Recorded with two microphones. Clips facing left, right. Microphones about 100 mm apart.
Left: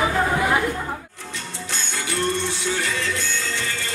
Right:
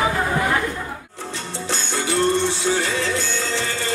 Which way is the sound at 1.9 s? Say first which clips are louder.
Right 5 dB; 30° right (ahead or behind).